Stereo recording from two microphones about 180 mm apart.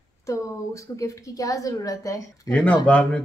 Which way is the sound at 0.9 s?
20° left (ahead or behind).